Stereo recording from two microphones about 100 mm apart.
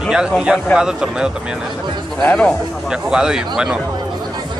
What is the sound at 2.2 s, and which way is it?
Speech, 15° left (ahead or behind).